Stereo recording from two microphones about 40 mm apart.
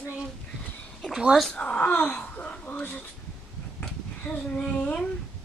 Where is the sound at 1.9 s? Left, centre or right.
Left.